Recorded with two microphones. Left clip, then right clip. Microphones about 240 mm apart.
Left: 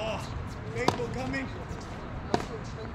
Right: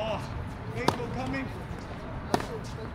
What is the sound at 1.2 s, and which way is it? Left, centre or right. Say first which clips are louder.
Basketball bounce: even; left.